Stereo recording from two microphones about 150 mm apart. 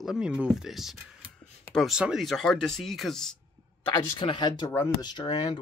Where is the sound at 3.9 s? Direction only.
30° left (ahead or behind).